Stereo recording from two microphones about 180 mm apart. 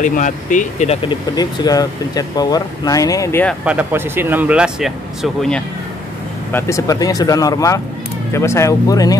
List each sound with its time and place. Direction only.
0.0 s speech: 45° left (ahead or behind)
1.0 s speech: 20° left (ahead or behind)
3.6 s speech: 10° right (ahead or behind)
6.5 s speech: 20° left (ahead or behind)